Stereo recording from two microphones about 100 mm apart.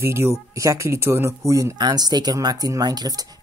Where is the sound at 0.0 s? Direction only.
25° right (ahead or behind).